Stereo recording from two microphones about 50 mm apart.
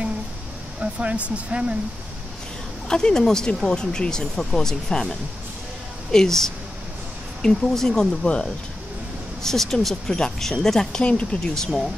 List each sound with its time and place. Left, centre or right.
0.7 s speech: right
2.9 s speech: centre
6.1 s speech: centre
11.5 s speech: centre